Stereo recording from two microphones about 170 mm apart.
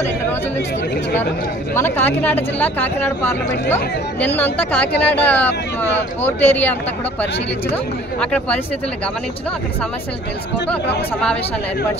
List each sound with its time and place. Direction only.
1.8 s speech: 10° left (ahead or behind)